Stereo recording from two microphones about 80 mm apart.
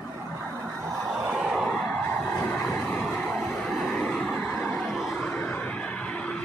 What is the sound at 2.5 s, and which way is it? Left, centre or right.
Vehicle, centre.